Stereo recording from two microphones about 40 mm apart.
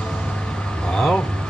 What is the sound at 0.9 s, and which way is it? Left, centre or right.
Speech, centre.